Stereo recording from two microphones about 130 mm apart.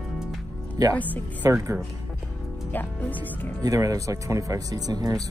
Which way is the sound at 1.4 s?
25° right (ahead or behind).